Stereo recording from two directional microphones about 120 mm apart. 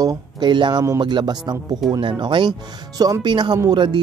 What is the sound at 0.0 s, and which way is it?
Speech, 35° right (ahead or behind).